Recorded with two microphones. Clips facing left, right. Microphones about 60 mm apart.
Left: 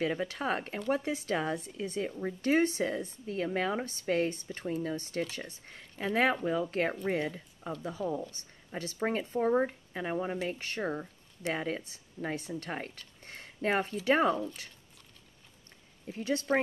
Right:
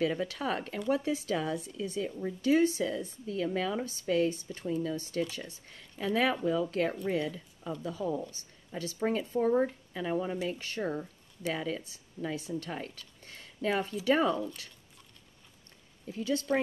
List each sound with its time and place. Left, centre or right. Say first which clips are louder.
0.0 s speech: right 1 dB; left
5.7 s speech: right 2 dB; left
8.3 s speech: even; left; by 10.4 s centre
10.5 s speech: even; left
10.8 s speech: right 1 dB; centre
11.5 s speech: left 2 dB; left
16.1 s speech: right 1 dB; left